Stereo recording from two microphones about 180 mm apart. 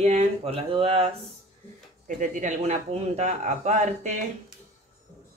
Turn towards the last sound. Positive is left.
turn(degrees=-45)  # may be behind; listen again after turning